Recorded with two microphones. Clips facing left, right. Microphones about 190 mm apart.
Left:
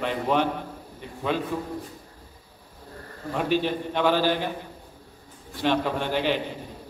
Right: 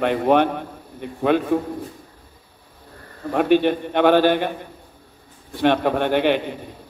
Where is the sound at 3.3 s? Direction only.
60° right (ahead or behind).